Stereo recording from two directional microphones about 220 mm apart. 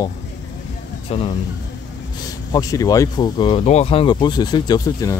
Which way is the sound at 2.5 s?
15° left (ahead or behind).